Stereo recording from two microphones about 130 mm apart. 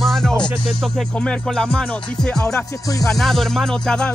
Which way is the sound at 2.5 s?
25° left (ahead or behind).